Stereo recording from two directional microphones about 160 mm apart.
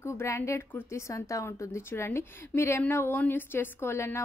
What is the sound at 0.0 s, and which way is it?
A woman's voice, 15° left (ahead or behind).